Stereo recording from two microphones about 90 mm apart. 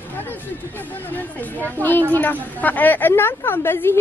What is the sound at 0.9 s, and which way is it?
A woman's voice, 20° left (ahead or behind).